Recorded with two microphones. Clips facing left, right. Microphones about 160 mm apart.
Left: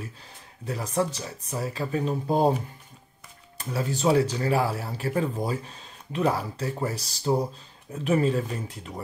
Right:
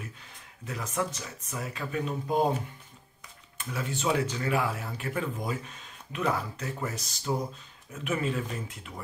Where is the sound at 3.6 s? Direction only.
35° left (ahead or behind).